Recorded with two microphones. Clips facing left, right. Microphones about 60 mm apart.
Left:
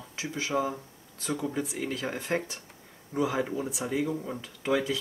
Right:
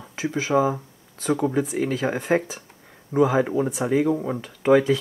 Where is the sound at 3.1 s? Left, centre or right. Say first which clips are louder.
Right 9 dB; right.